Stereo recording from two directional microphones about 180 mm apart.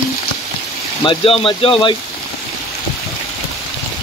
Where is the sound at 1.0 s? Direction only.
30° left (ahead or behind).